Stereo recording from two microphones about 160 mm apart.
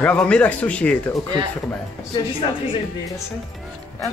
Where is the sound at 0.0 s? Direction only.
5° left (ahead or behind).